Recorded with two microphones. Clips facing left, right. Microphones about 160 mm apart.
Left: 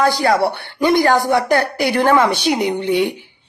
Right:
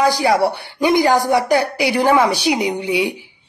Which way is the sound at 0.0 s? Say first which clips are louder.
Even; 20° right (ahead or behind).